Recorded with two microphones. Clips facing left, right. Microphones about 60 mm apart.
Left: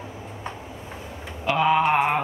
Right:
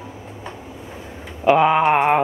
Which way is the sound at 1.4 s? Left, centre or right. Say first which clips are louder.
Right 5 dB; right.